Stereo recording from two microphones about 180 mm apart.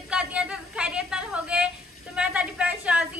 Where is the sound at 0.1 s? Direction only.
5° right (ahead or behind).